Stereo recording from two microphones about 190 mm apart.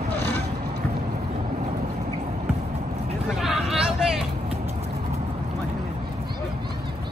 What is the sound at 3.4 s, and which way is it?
Hubbub, centre (ahead or behind).